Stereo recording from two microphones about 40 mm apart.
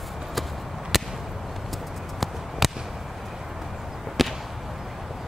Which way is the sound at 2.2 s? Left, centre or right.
Centre.